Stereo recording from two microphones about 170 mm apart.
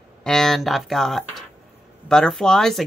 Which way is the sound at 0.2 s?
5° left (ahead or behind).